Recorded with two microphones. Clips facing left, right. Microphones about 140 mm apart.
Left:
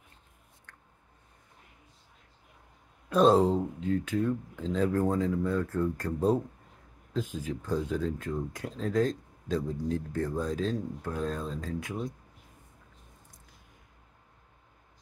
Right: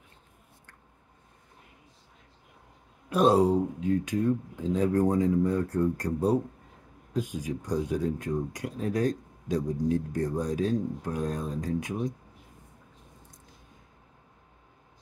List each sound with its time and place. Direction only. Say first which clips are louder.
3.1 s speech: even; 10° right (ahead or behind)